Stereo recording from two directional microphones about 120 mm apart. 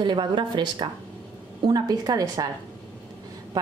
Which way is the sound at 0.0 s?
40° right (ahead or behind).